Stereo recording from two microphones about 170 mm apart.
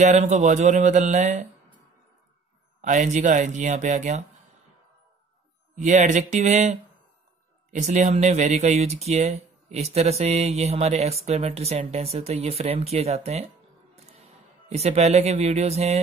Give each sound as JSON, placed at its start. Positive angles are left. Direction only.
{"t": 0.0, "sound": "speech", "side_deg": -45}
{"t": 2.8, "sound": "speech", "side_deg": -45}
{"t": 5.8, "sound": "speech", "side_deg": -45}
{"t": 7.7, "sound": "speech", "side_deg": -45}